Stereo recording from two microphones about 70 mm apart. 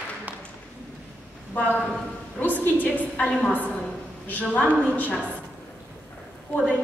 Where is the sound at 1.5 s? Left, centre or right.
Left.